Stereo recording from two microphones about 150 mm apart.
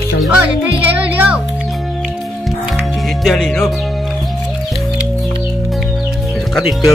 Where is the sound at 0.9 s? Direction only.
10° right (ahead or behind).